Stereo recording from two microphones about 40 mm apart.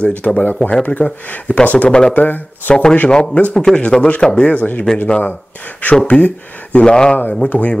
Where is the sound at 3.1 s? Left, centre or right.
Left.